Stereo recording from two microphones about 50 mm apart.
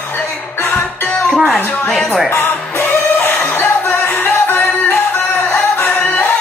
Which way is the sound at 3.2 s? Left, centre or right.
Left.